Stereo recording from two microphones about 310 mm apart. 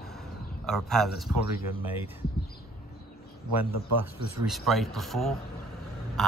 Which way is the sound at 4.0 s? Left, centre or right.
Centre.